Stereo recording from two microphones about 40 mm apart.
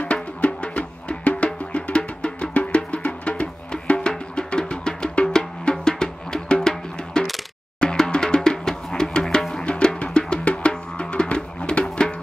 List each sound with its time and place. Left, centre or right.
0.1 s music: left